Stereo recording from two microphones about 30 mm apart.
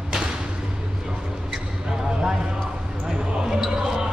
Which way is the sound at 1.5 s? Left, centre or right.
Centre.